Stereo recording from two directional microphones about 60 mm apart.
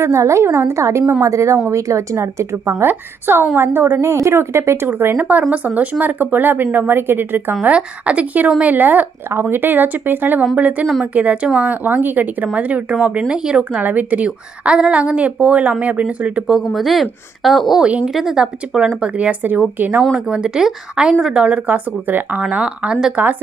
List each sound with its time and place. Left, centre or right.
0.0 s speech: right
2.8 s a woman's voice: right
5.3 s a woman's voice: right
7.6 s a woman's voice: right
16.5 s speech: centre
17.8 s a woman's voice: right
18.1 s speech: centre
18.9 s a woman's voice: right
20.2 s speech: centre; by 22.4 s right
22.4 s a woman's voice: centre